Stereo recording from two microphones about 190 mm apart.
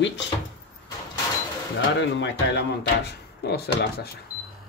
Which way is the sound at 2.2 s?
65° left (ahead or behind).